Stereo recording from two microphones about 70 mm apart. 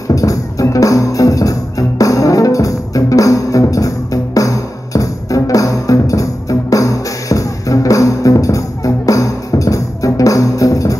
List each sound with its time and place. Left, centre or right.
0.1 s music: left